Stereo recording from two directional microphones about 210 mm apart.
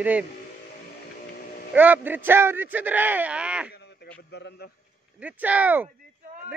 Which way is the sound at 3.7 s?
50° left (ahead or behind).